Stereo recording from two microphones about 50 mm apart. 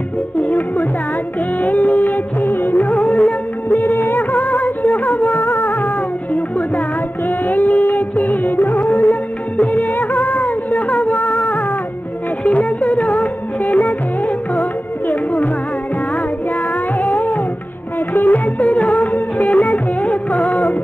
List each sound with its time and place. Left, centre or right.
0.4 s music: left
3.6 s music: left
7.2 s music: left
17.0 s music: left